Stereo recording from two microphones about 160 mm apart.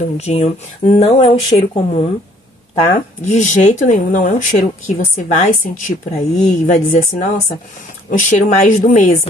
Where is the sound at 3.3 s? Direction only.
45° left (ahead or behind).